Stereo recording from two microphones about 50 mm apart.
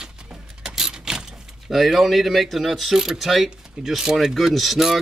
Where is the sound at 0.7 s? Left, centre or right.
Centre.